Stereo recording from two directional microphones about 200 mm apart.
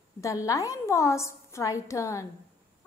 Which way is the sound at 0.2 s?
15° left (ahead or behind).